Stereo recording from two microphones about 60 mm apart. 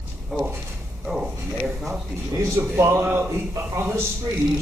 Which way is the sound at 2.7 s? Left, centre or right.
Right.